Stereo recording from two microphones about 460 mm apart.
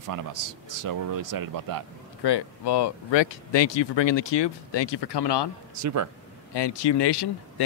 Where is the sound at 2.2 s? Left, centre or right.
Left.